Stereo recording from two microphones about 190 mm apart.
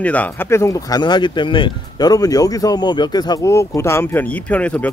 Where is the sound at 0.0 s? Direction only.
10° left (ahead or behind).